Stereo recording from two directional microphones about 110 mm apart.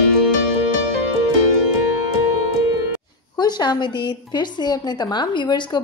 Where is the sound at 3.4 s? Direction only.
40° left (ahead or behind).